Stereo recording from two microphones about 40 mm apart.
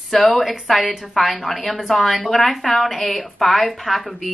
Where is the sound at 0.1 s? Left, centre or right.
Centre.